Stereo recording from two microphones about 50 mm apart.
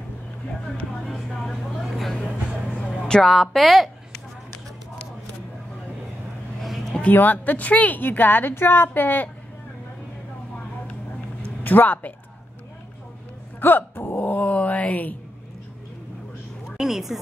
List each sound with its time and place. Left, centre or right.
1.0 s speech: centre
2.8 s a sound: centre
3.3 s a woman's voice: centre
6.6 s a sound: centre
7.1 s a woman's voice: left
11.4 s speech: left
13.6 s a woman's voice: left
16.7 s speech: centre